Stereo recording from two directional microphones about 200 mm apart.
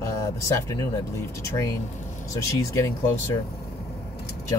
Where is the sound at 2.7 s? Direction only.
15° left (ahead or behind).